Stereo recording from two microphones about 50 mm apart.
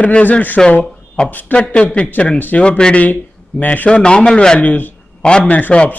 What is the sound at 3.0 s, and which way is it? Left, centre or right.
Speech, left.